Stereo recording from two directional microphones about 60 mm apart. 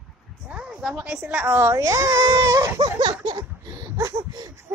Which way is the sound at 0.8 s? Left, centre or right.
Centre.